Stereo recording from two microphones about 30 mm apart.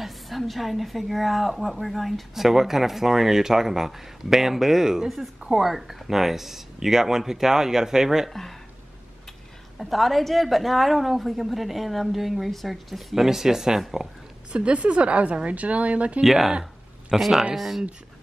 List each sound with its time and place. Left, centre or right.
0.0 s a woman's voice: centre
2.4 s speech: centre
8.3 s speech: centre
9.8 s a woman's voice: centre
13.1 s speech: centre
14.5 s a woman's voice: right
16.3 s a woman's voice: centre